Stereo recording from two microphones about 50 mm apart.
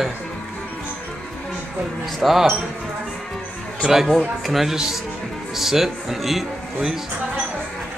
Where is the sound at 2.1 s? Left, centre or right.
Centre.